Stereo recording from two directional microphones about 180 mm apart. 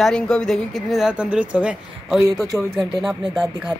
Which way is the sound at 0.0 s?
5° left (ahead or behind).